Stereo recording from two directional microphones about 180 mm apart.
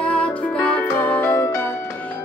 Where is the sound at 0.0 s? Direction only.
10° left (ahead or behind).